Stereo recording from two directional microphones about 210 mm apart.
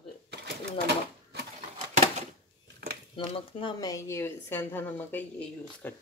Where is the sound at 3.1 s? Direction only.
25° left (ahead or behind); by 5.9 s 10° left (ahead or behind).